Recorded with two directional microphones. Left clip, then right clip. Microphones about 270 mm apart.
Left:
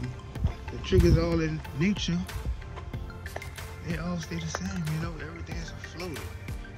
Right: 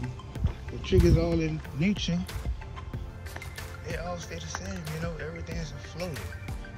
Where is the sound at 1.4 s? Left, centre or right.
Left.